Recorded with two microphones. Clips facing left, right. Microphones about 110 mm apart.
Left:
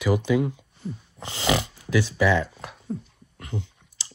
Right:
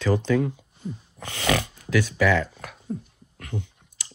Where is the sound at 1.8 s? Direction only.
20° left (ahead or behind).